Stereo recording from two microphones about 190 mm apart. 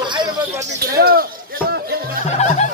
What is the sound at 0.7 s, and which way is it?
Speech, 55° right (ahead or behind).